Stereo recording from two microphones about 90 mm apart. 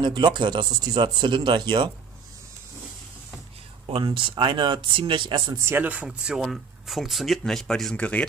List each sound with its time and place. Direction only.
0.0 s speech: 60° right (ahead or behind)
3.8 s speech: 65° right (ahead or behind)
5.6 s speech: 30° right (ahead or behind)
5.9 s speech: 10° right (ahead or behind); by 8.3 s 15° left (ahead or behind)